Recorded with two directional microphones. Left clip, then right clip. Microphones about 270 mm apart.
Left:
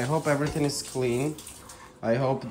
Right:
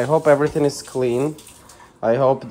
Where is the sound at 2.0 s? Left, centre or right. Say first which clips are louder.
Right 9 dB; right.